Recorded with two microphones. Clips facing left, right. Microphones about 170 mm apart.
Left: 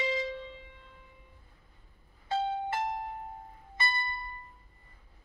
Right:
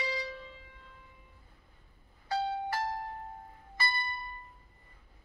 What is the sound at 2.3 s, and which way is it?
Music, 25° left (ahead or behind).